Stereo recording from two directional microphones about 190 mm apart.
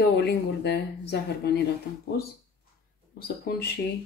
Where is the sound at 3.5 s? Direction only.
55° left (ahead or behind).